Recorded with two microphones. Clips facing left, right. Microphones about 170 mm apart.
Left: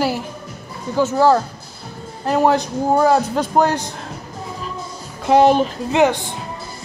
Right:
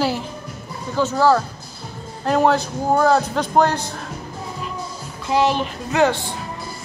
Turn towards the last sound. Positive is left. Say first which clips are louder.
# left 2 dB
turn(degrees=20)  # may be behind; listen again after turning